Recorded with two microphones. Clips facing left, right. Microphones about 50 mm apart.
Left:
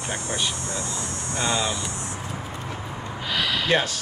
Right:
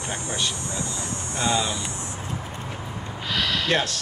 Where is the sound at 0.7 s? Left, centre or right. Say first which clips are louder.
Even; right.